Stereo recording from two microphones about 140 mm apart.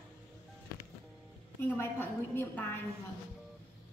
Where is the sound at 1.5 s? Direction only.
15° left (ahead or behind).